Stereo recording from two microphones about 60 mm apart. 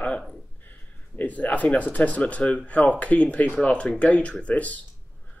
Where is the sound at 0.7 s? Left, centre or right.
Left.